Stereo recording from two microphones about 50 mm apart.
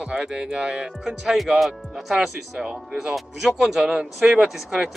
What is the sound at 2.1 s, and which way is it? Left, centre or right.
Speech, centre.